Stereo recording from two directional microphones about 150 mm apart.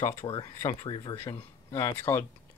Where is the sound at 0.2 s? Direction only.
35° left (ahead or behind).